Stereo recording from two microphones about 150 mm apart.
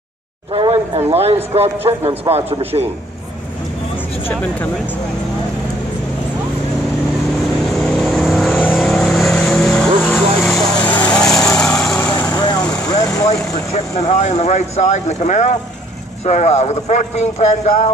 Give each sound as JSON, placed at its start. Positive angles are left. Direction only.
{"t": 0.5, "sound": "a man's voice", "side_deg": -35}
{"t": 4.3, "sound": "speech", "side_deg": 10}
{"t": 7.8, "sound": "vehicle", "side_deg": 0}
{"t": 12.3, "sound": "vehicle", "side_deg": 30}
{"t": 13.3, "sound": "speech", "side_deg": 45}